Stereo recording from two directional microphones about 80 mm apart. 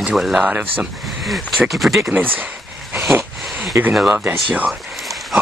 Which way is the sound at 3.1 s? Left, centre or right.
Right.